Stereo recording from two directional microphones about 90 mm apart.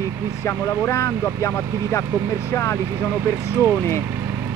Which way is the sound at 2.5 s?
30° left (ahead or behind).